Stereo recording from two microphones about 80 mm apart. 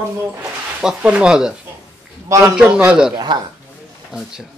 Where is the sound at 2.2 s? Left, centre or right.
Right.